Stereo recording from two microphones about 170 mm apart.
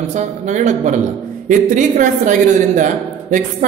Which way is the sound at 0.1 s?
45° right (ahead or behind).